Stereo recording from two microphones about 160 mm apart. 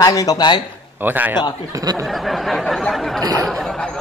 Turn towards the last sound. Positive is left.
turn(degrees=5)  # may be behind; listen again after turning